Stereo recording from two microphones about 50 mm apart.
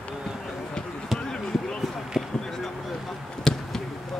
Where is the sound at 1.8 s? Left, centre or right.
Centre.